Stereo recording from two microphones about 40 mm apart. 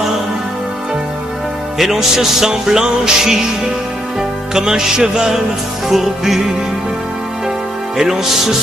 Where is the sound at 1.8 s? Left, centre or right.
Centre.